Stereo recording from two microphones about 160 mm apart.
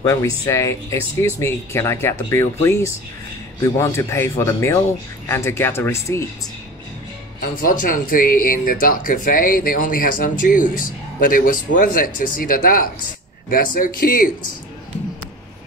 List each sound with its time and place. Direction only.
0.0 s speech: 20° left (ahead or behind)
7.5 s speech: 60° left (ahead or behind)